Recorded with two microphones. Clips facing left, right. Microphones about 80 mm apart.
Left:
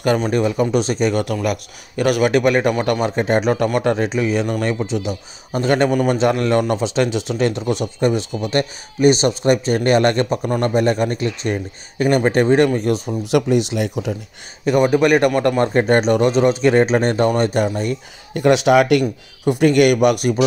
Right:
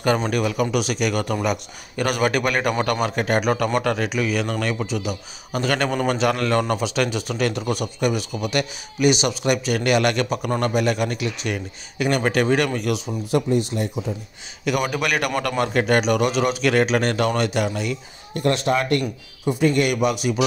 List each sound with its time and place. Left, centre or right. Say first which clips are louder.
0.3 s a man's voice: left 4 dB; left
1.3 s a man's voice: left 2 dB; centre
2.0 s a man's voice: left 5 dB; centre
5.9 s a man's voice: left 4 dB; centre; by 12.9 s left
13.2 s speech: left 4 dB; left
14.6 s a man's voice: left 8 dB; left
18.5 s a man's voice: left 8 dB; left